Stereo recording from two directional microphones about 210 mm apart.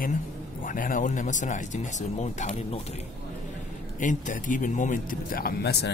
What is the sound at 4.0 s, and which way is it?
Speech, 40° left (ahead or behind).